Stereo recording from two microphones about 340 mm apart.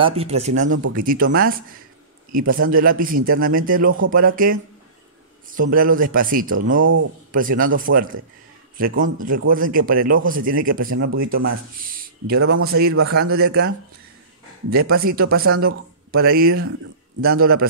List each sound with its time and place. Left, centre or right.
0.0 s speech: centre
0.7 s speech: right
0.9 s speech: right
5.5 s speech: right
12.4 s speech: right
14.7 s speech: right